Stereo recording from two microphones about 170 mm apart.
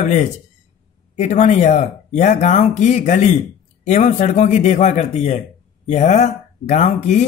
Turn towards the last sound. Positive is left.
turn(degrees=45)  # may be behind; listen again after turning